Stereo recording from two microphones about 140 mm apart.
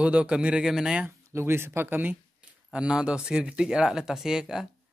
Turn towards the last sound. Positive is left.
turn(degrees=-5)  # may be behind; listen again after turning